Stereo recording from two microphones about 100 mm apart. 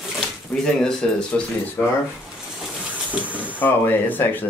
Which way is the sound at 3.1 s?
15° right (ahead or behind).